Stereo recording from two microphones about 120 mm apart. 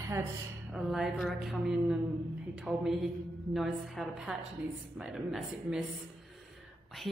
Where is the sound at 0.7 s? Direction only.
5° right (ahead or behind).